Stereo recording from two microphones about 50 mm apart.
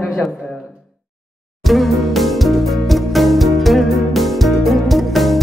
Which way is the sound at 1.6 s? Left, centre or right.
Centre.